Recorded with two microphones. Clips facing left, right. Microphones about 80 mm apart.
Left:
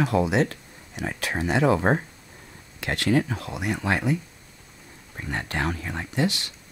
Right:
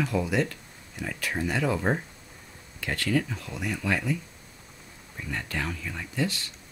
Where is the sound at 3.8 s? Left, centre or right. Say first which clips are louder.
Left 3 dB; left.